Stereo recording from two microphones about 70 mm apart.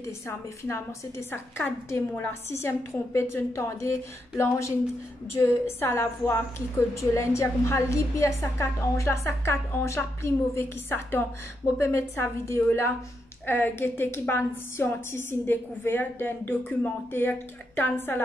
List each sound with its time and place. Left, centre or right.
0.7 s a woman's voice: left
2.5 s a woman's voice: left